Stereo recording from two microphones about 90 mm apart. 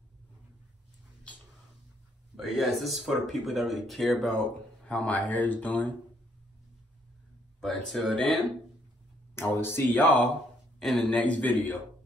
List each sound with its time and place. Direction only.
2.3 s speech: centre (ahead or behind); by 5.9 s 20° left (ahead or behind)
7.6 s speech: 5° left (ahead or behind)
9.3 s speech: 25° left (ahead or behind)
10.8 s speech: centre (ahead or behind)
11.1 s a man's voice: 15° left (ahead or behind)